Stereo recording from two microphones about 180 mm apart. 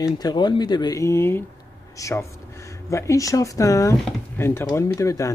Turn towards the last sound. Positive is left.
turn(degrees=15)  # may be behind; listen again after turning